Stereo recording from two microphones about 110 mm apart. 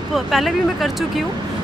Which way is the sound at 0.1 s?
Centre (ahead or behind).